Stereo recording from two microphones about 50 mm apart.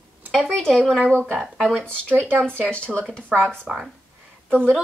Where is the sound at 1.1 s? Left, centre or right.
Left.